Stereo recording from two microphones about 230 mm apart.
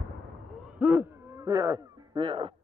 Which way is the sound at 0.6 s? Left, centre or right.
Centre.